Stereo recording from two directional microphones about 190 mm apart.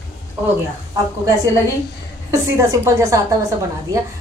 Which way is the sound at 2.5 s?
15° right (ahead or behind).